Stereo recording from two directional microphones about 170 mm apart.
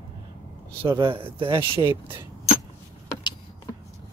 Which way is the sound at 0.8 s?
30° right (ahead or behind).